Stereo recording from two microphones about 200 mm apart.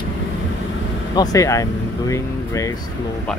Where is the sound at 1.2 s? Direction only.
15° left (ahead or behind).